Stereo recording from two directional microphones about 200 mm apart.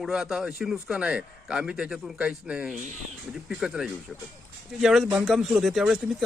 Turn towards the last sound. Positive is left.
turn(degrees=0)  # may be behind; listen again after turning